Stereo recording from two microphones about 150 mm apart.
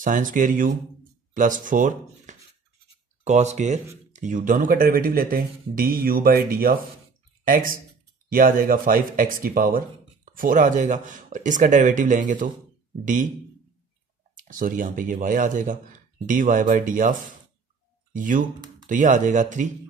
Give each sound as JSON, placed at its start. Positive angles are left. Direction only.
{"t": 0.0, "sound": "speech", "side_deg": -60}
{"t": 3.3, "sound": "speech", "side_deg": -50}
{"t": 14.3, "sound": "speech", "side_deg": -65}